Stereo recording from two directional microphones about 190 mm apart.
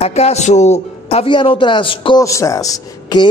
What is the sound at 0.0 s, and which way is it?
A man's voice, 35° left (ahead or behind).